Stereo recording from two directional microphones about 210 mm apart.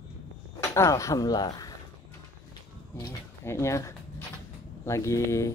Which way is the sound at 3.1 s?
15° left (ahead or behind).